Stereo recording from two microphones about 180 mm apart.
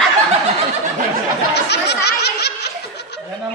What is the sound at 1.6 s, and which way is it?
Snicker, 70° left (ahead or behind).